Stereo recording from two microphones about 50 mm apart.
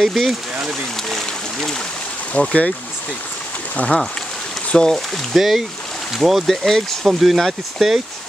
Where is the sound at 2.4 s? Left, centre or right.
Left.